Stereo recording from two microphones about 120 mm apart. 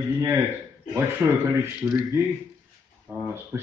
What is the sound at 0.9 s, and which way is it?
Speech, 20° right (ahead or behind).